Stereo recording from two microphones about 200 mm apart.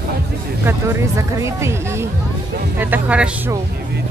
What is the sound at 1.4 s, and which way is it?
Speech, 15° right (ahead or behind).